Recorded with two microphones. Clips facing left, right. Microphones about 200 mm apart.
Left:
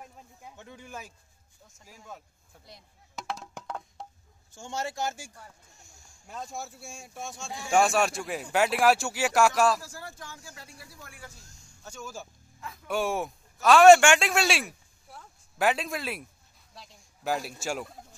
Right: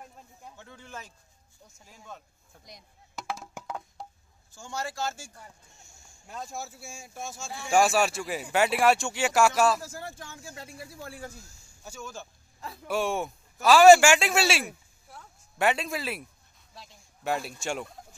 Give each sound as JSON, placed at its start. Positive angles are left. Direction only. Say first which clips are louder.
{"t": 0.4, "sound": "a sound", "louder": "left 2 dB", "side_deg": 15}
{"t": 1.9, "sound": "speech", "louder": "left 1 dB", "side_deg": 5}
{"t": 3.2, "sound": "music", "louder": "even", "side_deg": -5}
{"t": 4.6, "sound": "speech", "louder": "left 1 dB", "side_deg": 25}
{"t": 5.7, "sound": "speech", "louder": "even", "side_deg": 0}
{"t": 9.8, "sound": "speech", "louder": "right 3 dB", "side_deg": -20}
{"t": 11.4, "sound": "a sound", "louder": "right 1 dB", "side_deg": -10}
{"t": 12.0, "sound": "speech", "louder": "even", "side_deg": 5}
{"t": 12.5, "sound": "music", "louder": "right 2 dB", "side_deg": -35}
{"t": 12.8, "sound": "speech", "louder": "even", "side_deg": 0}
{"t": 15.0, "sound": "a sound", "louder": "even", "side_deg": 0}
{"t": 16.7, "sound": "speech", "louder": "right 1 dB", "side_deg": 0}